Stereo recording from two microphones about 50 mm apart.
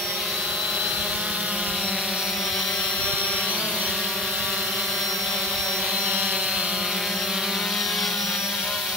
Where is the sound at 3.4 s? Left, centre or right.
Centre.